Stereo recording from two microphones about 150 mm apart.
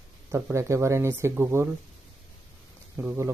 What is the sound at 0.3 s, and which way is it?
Speech, 20° right (ahead or behind).